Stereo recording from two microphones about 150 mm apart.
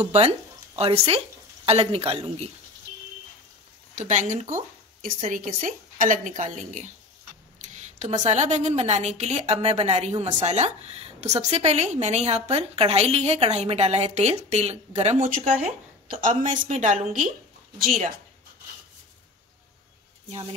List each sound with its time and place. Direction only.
0.0 s speech: 40° right (ahead or behind)
3.9 s a woman's voice: 55° right (ahead or behind)
15.1 s a woman's voice: 60° right (ahead or behind)
17.7 s speech: 70° right (ahead or behind)